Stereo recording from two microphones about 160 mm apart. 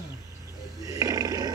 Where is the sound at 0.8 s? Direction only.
20° right (ahead or behind).